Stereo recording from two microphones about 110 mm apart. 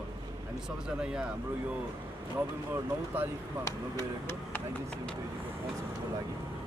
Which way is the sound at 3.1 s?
15° right (ahead or behind).